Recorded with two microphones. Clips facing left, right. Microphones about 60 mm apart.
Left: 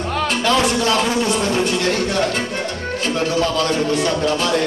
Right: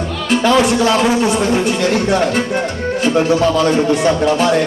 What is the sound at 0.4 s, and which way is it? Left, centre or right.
Speech, centre.